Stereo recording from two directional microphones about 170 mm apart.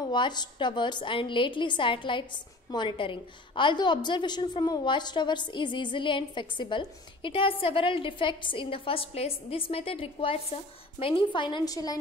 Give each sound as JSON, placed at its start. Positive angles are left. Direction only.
{"t": 0.1, "sound": "a woman's voice", "side_deg": 25}